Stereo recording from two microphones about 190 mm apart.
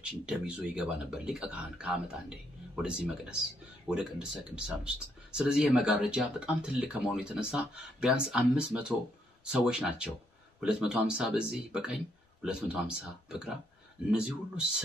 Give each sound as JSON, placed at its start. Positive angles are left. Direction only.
{"t": 0.0, "sound": "speech", "side_deg": -5}